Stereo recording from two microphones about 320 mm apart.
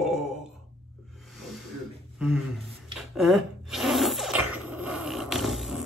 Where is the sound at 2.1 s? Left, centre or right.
Centre.